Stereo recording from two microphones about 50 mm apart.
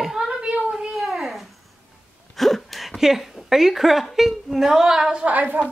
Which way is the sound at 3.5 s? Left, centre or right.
Centre.